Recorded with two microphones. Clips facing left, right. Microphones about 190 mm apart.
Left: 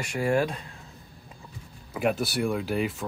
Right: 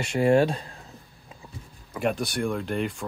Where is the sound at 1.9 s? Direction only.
5° left (ahead or behind).